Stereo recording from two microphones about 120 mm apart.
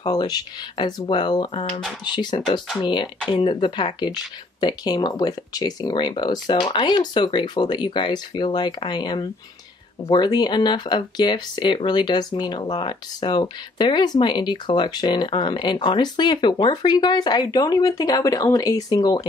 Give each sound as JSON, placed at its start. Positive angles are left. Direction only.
{"t": 0.0, "sound": "speech", "side_deg": 35}